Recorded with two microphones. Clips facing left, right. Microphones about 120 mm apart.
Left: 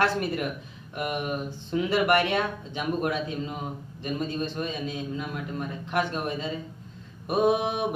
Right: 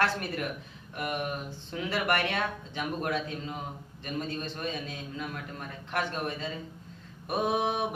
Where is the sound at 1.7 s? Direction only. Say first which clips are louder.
Left 7 dB; 15° left (ahead or behind).